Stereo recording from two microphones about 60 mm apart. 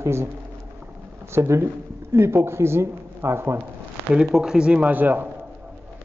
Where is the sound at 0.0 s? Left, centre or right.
Right.